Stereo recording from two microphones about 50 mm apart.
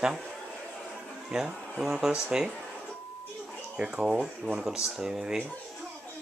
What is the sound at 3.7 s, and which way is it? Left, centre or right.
Speech, centre.